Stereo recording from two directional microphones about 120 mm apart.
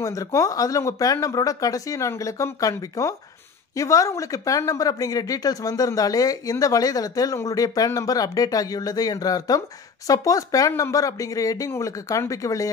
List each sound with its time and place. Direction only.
0.0 s speech: 25° left (ahead or behind)